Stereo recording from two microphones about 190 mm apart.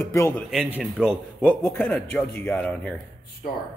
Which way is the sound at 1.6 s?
10° left (ahead or behind).